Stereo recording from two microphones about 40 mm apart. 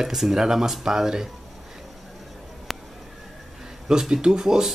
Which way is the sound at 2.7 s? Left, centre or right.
Centre.